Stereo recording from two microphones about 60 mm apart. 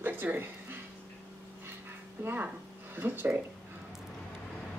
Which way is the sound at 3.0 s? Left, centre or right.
Right.